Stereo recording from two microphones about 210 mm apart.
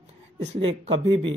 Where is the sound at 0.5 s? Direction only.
25° right (ahead or behind).